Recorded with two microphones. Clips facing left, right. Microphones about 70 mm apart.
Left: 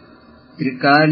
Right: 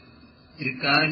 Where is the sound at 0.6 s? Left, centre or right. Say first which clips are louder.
Left 10 dB; left.